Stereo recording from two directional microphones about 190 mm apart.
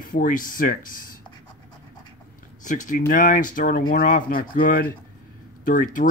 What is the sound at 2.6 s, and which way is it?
Speech, 40° left (ahead or behind).